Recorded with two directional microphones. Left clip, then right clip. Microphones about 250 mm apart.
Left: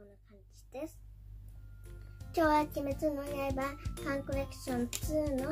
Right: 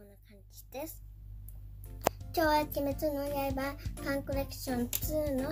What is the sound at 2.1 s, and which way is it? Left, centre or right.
A child's voice, centre.